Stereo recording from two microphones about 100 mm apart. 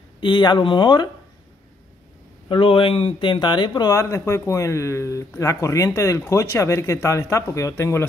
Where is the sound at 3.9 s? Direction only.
30° left (ahead or behind).